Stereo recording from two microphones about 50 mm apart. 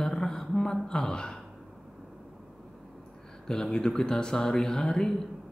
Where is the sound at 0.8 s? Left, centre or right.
Centre.